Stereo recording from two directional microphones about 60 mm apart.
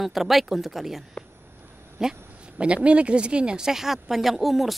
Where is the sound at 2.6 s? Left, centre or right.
Centre.